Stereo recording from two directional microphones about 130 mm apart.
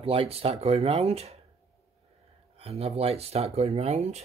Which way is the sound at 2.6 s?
50° right (ahead or behind).